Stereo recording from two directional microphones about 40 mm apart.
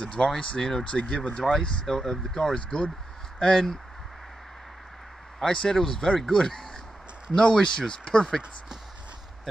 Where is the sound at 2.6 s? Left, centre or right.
Left.